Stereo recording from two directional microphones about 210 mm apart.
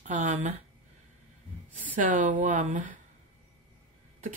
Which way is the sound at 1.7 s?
40° right (ahead or behind).